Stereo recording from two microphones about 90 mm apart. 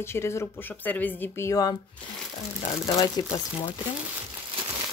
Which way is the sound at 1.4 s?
45° left (ahead or behind).